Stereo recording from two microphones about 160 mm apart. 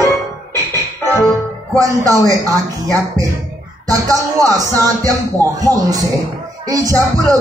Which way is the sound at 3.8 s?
20° right (ahead or behind).